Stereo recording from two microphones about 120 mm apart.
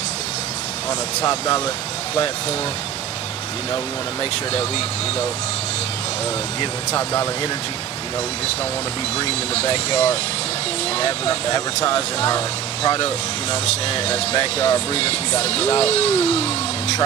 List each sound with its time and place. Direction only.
1.2 s speech: 30° left (ahead or behind)
4.2 s speech: 50° left (ahead or behind)
6.9 s speech: 25° left (ahead or behind)
9.2 s speech: 55° left (ahead or behind)